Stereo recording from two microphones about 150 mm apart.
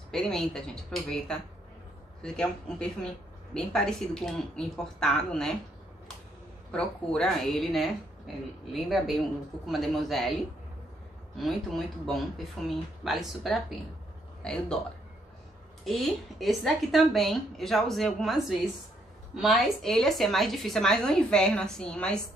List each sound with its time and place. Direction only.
0.1 s a woman's voice: 5° left (ahead or behind)
6.7 s a woman's voice: 5° left (ahead or behind)
11.3 s a woman's voice: centre (ahead or behind)
15.8 s a woman's voice: centre (ahead or behind)